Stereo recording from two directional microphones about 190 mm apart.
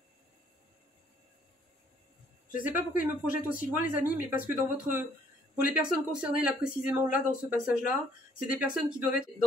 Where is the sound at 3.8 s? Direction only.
45° left (ahead or behind).